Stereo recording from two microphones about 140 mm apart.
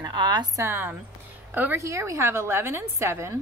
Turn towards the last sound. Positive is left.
turn(degrees=-20)  # may be behind; listen again after turning